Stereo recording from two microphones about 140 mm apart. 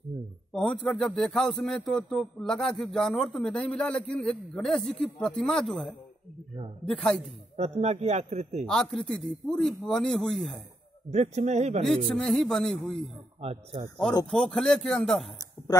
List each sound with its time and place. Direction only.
0.1 s a sound: 40° right (ahead or behind)
0.5 s speech: 5° left (ahead or behind)
7.5 s a man's voice: 50° right (ahead or behind)
8.6 s speech: 5° left (ahead or behind)
11.1 s a man's voice: 50° right (ahead or behind)
12.2 s speech: 5° left (ahead or behind)
13.4 s a man's voice: 45° right (ahead or behind)
14.3 s speech: 5° left (ahead or behind)